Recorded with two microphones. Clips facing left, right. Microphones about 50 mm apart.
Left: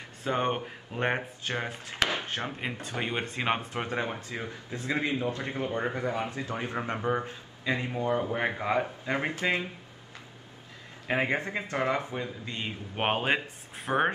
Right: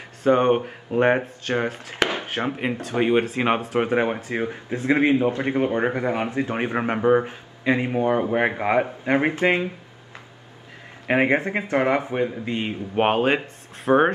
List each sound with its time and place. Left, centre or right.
0.3 s speech: centre
2.0 s chopping: right
2.9 s speech: centre; by 9.7 s right
11.1 s speech: right
12.9 s speech: centre
13.8 s speech: centre